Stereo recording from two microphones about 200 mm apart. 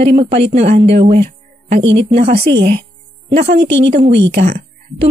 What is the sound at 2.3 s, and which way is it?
Speech, 55° right (ahead or behind).